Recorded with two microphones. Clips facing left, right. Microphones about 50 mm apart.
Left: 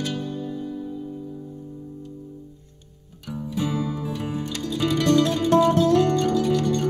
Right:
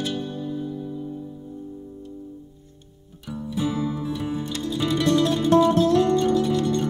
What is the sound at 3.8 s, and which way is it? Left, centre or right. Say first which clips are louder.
Music: right 1 dB; centre.